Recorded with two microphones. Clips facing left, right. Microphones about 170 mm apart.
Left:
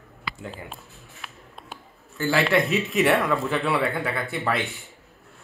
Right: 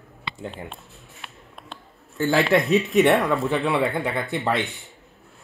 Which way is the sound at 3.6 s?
15° right (ahead or behind).